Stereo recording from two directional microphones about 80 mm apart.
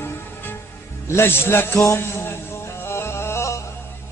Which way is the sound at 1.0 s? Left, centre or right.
Left.